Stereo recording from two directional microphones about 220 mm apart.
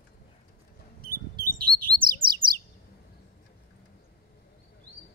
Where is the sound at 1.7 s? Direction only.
45° right (ahead or behind).